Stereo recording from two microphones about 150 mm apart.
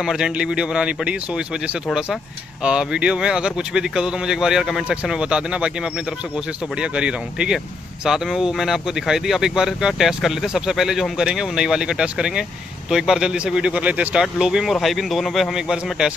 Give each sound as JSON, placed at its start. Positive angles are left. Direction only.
{"t": 0.0, "sound": "speech", "side_deg": -5}